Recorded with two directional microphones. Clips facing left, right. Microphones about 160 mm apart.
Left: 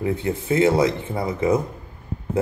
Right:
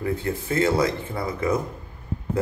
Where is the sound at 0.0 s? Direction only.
20° left (ahead or behind).